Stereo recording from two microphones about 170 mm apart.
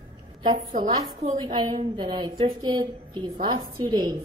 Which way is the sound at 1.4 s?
25° right (ahead or behind).